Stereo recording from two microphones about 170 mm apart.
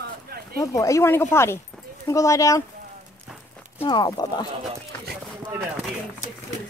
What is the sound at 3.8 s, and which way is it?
Speech, 25° left (ahead or behind).